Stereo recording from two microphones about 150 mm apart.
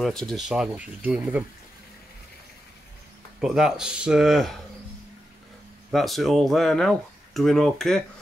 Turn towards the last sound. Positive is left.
turn(degrees=5)  # may be behind; listen again after turning